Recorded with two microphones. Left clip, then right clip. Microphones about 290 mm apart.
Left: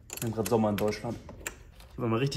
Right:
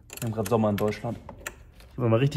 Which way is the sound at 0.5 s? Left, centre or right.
Right.